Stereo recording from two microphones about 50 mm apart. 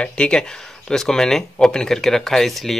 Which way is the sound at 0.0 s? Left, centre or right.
Centre.